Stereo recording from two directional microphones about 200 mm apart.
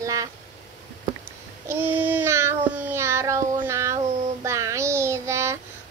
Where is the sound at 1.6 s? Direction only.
10° right (ahead or behind).